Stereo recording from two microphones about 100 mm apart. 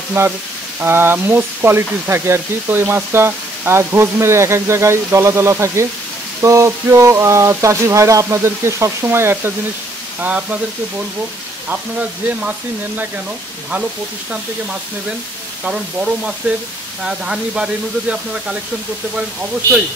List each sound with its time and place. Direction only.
0.2 s speech: 25° right (ahead or behind)
10.2 s speech: 15° right (ahead or behind)
12.3 s speech: 15° right (ahead or behind)
15.6 s speech: 10° right (ahead or behind)